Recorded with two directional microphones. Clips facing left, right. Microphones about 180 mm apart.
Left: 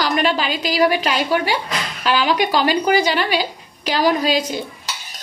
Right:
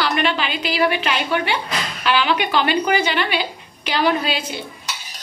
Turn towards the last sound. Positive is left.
turn(degrees=40)  # may be behind; listen again after turning